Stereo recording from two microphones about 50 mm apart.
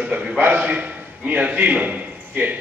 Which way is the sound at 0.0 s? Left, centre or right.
Right.